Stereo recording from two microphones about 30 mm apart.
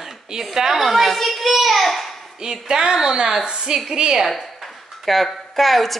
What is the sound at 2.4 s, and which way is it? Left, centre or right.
A woman's voice, right.